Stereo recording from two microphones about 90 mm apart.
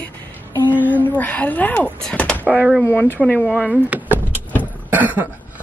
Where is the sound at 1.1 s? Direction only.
20° left (ahead or behind).